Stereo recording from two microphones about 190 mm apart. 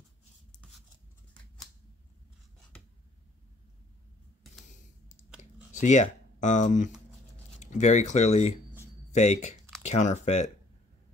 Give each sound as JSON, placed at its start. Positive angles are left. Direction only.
{"t": 5.4, "sound": "computer keyboard", "side_deg": 40}
{"t": 7.5, "sound": "speech", "side_deg": 40}